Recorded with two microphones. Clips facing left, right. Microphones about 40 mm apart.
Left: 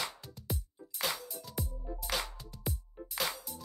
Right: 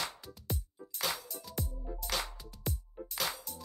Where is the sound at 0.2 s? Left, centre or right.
Centre.